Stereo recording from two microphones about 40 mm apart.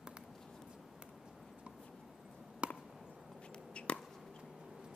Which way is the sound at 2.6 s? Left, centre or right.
Right.